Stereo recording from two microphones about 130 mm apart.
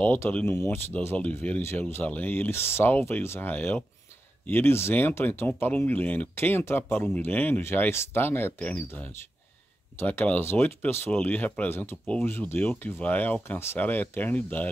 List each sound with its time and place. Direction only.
0.0 s speech: 15° left (ahead or behind)